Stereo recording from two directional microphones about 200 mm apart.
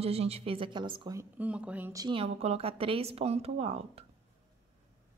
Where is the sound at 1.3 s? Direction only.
5° right (ahead or behind); by 4.0 s 30° right (ahead or behind).